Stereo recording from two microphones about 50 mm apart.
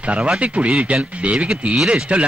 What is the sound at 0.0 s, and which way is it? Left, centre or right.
A man's voice, right.